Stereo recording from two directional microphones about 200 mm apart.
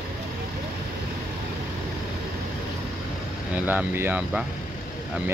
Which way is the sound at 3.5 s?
10° right (ahead or behind).